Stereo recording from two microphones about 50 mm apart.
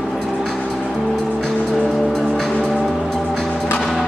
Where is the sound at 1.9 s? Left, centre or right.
Centre.